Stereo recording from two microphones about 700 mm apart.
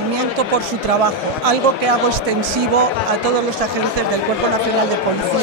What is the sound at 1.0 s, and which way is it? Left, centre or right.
Speech, right.